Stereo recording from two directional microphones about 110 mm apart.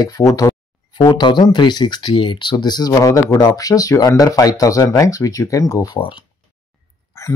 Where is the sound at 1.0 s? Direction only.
40° left (ahead or behind).